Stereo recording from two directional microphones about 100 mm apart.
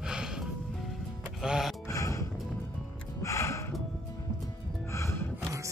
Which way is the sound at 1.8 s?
30° left (ahead or behind).